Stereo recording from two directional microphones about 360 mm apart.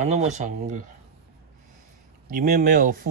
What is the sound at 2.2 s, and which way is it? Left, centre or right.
Speech, right.